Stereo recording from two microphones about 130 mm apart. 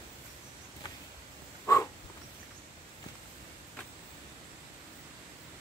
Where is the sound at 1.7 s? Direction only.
25° left (ahead or behind).